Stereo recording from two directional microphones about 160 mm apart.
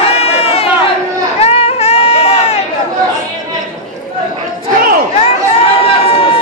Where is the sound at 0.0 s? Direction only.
40° left (ahead or behind).